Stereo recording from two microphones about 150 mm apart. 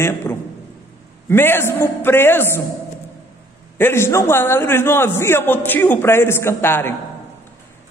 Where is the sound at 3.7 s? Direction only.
15° left (ahead or behind).